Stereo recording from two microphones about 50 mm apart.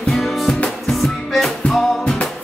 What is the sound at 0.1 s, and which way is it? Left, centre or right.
Music, centre.